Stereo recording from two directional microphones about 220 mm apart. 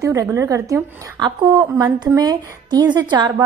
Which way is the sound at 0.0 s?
15° right (ahead or behind).